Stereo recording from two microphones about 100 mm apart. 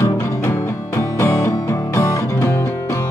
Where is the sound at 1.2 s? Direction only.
30° left (ahead or behind).